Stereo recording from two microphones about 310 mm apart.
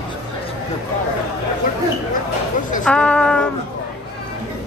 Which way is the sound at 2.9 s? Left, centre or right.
Centre.